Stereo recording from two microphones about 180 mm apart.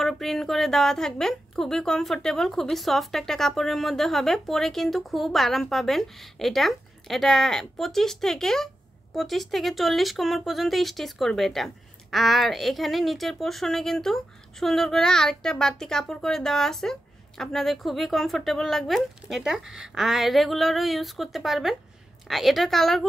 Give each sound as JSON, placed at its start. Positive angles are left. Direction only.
{"t": 0.0, "sound": "speech", "side_deg": 0}